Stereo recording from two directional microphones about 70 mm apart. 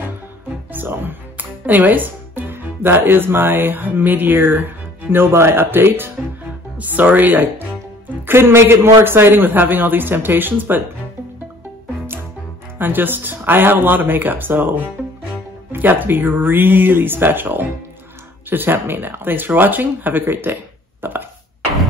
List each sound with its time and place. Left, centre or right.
0.7 s a man's voice: right
12.7 s a man's voice: right
21.0 s a sound: right